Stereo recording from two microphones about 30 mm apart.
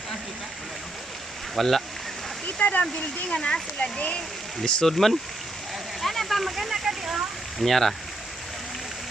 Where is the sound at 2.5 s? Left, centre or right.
Left.